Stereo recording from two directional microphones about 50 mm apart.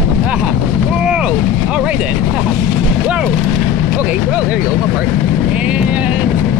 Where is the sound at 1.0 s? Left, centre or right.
Centre.